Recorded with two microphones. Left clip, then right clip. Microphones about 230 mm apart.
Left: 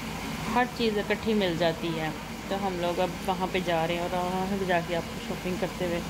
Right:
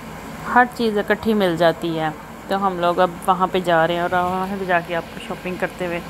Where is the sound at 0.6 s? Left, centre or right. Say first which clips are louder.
Right 10 dB; right.